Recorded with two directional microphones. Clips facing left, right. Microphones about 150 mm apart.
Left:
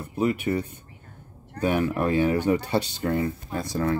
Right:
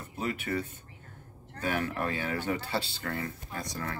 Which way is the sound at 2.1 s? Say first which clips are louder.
Left 11 dB; 15° left (ahead or behind).